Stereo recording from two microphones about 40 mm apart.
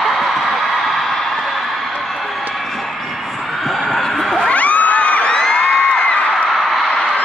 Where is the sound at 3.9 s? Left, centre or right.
Centre.